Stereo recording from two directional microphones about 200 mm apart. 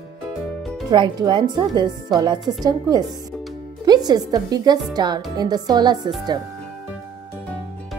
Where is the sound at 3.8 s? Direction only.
20° right (ahead or behind).